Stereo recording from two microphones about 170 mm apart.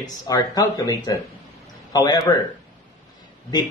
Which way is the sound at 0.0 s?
25° left (ahead or behind).